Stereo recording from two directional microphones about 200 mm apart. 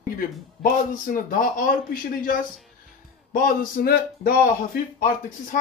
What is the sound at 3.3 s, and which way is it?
Speech, 45° left (ahead or behind).